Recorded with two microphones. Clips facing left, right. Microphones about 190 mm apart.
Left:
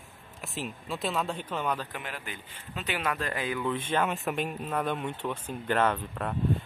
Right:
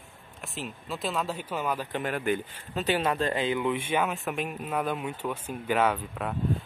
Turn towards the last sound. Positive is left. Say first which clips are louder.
# right 1 dB
turn(degrees=-5)  # may be behind; listen again after turning